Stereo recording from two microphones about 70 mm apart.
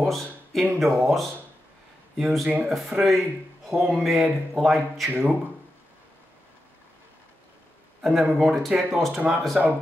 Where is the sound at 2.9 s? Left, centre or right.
Centre.